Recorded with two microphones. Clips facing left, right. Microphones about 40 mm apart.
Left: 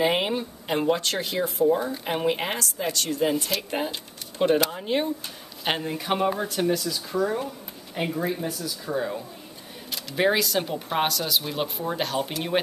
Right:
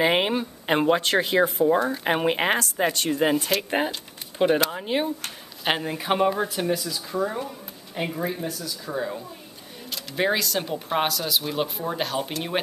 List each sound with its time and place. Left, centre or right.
0.0 s a sound: right
0.8 s speech: right
4.4 s speech: centre